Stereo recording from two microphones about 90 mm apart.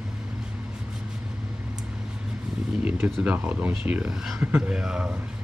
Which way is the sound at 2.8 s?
15° right (ahead or behind).